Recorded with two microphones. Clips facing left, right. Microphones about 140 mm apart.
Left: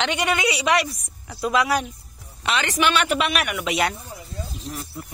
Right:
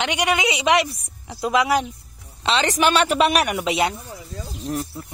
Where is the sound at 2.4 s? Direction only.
30° right (ahead or behind).